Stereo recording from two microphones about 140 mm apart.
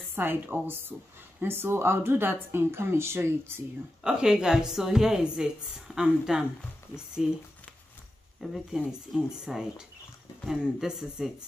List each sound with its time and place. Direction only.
0.1 s speech: 15° right (ahead or behind)
4.0 s a woman's voice: 5° right (ahead or behind)
8.4 s a woman's voice: 5° right (ahead or behind)